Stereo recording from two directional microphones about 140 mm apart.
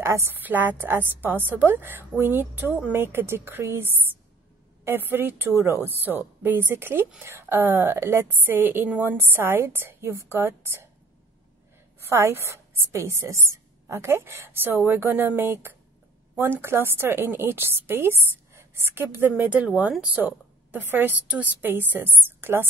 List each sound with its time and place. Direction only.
0.0 s a woman's voice: 20° right (ahead or behind)
12.0 s a woman's voice: 20° right (ahead or behind)